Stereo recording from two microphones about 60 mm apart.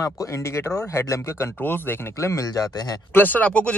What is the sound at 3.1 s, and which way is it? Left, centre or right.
Speech, left.